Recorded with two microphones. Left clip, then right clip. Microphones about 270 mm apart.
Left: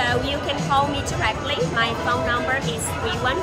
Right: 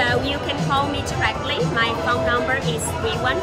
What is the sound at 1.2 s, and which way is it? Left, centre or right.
Speech, centre.